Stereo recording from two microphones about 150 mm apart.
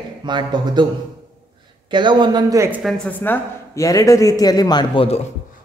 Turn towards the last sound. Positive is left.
turn(degrees=35)  # may be behind; listen again after turning